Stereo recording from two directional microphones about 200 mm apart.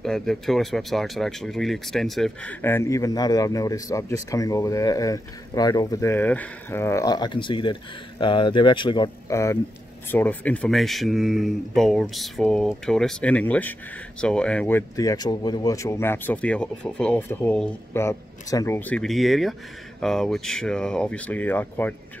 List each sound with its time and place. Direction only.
0.0 s speech: centre (ahead or behind)